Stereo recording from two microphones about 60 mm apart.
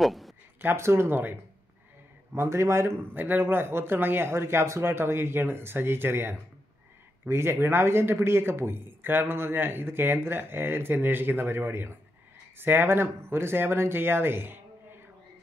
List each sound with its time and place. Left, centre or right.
0.0 s a sound: centre
0.6 s speech: right
3.2 s speech: right